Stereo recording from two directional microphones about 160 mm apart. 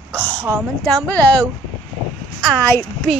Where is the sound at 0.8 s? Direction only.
10° left (ahead or behind).